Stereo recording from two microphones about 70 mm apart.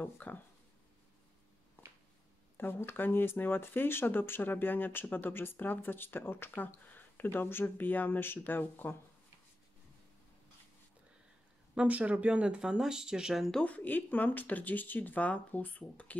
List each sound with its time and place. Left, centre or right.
0.0 s speech: left
2.5 s speech: left
11.7 s speech: centre
13.7 s speech: left